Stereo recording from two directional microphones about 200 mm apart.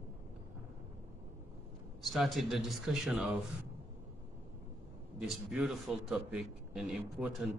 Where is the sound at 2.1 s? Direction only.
Centre (ahead or behind).